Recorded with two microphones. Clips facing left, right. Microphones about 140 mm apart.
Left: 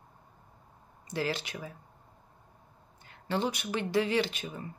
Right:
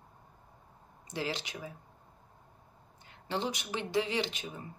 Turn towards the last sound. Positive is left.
turn(degrees=-15)  # may be behind; listen again after turning